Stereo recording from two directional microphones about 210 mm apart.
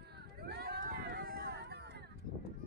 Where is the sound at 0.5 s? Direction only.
50° right (ahead or behind).